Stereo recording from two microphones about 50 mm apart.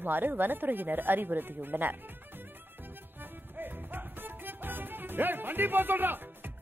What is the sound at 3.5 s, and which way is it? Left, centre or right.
Music, right.